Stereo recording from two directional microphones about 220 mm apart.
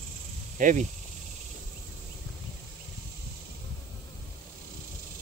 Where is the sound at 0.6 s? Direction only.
35° right (ahead or behind).